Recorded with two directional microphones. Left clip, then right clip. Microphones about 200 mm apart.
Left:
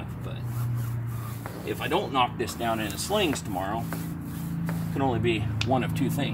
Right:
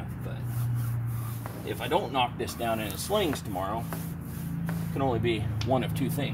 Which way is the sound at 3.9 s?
Centre (ahead or behind).